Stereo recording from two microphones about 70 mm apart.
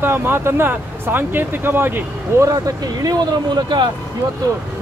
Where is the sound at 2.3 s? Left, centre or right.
Right.